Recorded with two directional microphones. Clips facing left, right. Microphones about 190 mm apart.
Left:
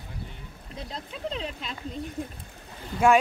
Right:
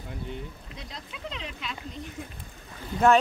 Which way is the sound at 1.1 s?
35° left (ahead or behind).